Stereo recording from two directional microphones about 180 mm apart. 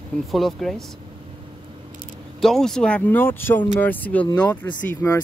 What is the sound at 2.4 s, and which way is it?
Speech, centre (ahead or behind).